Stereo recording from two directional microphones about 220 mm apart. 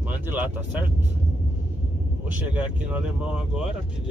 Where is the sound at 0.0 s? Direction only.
10° right (ahead or behind).